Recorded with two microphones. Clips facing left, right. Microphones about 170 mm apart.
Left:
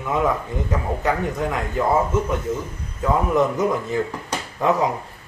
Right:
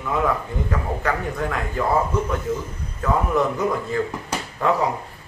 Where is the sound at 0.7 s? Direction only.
20° left (ahead or behind).